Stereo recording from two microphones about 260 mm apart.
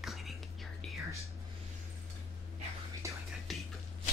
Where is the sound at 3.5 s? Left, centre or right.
Centre.